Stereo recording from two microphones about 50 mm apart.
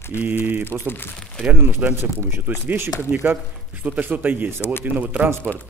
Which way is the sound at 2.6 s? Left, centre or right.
Right.